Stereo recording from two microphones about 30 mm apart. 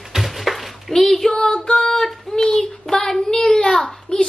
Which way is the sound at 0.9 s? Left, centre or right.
Centre.